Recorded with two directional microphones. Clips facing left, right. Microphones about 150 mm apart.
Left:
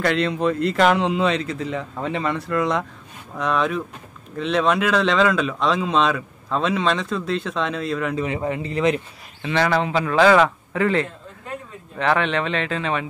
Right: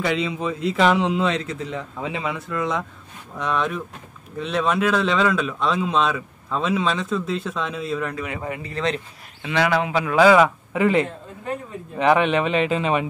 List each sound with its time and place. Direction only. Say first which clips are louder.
0.0 s speech: left 3 dB; centre (ahead or behind)
8.2 s a man's voice: left 5 dB; 25° left (ahead or behind)
9.4 s a man's voice: left 1 dB; 5° right (ahead or behind)